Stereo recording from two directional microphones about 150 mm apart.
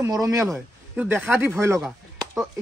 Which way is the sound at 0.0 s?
25° right (ahead or behind).